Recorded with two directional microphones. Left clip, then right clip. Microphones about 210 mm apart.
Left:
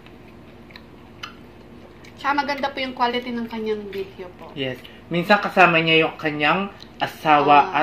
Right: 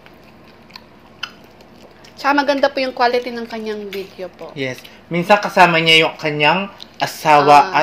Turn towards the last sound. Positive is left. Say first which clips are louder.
# right 5 dB
turn(degrees=-35)  # may be behind; listen again after turning